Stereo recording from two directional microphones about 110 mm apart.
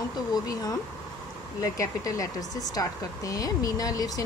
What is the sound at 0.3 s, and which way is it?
Speech, 35° left (ahead or behind).